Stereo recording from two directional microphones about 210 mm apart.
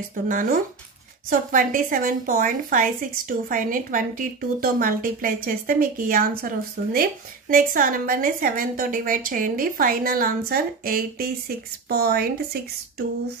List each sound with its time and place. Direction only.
0.1 s a woman's voice: 40° right (ahead or behind)